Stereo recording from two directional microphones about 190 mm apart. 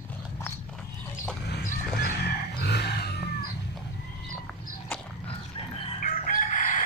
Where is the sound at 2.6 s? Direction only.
60° left (ahead or behind).